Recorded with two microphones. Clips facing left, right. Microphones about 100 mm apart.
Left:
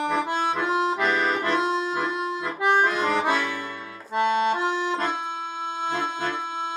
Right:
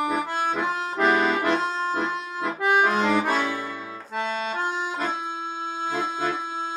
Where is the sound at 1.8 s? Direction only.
50° right (ahead or behind).